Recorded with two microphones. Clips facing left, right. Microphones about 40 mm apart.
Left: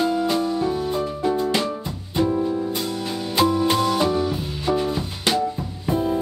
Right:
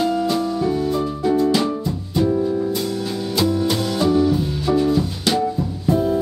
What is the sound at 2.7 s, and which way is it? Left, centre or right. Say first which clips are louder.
Music: right 3 dB; left.